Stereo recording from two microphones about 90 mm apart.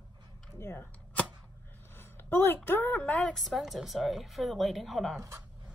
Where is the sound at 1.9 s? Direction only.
25° left (ahead or behind).